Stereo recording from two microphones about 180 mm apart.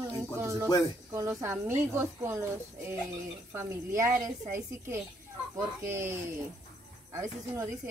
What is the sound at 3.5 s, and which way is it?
Speech, 15° right (ahead or behind).